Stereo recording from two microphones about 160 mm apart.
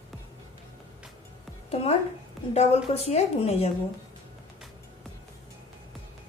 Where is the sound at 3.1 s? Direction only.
40° left (ahead or behind).